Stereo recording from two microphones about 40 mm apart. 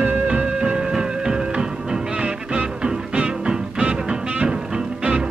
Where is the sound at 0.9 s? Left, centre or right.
Centre.